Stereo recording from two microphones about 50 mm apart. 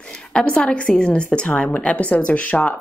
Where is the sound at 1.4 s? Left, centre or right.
Left.